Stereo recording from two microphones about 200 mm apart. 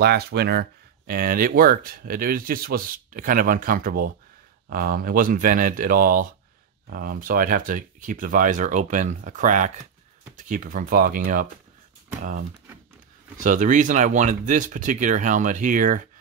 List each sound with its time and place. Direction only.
0.0 s speech: 50° right (ahead or behind)
13.4 s speech: 40° right (ahead or behind)